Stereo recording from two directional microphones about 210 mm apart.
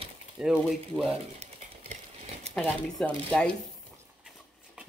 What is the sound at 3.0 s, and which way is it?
Speech, 5° left (ahead or behind).